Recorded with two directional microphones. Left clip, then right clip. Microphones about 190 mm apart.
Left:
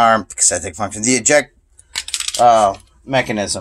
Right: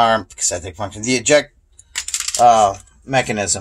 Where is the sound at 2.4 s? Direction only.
15° left (ahead or behind).